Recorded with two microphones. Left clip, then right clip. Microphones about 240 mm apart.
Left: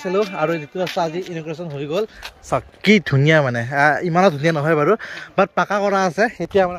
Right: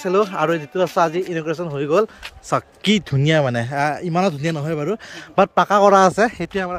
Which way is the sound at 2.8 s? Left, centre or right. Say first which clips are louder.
Left 4 dB; centre.